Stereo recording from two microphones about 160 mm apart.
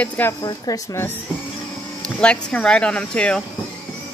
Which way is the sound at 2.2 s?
5° left (ahead or behind).